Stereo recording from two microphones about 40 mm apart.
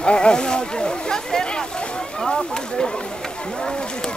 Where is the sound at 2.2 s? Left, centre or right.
Centre.